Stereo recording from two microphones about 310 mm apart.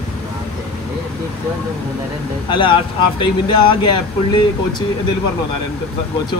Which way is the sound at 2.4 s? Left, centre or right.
Centre.